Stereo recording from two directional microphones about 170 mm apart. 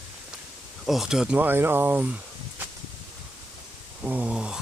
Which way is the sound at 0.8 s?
Centre (ahead or behind).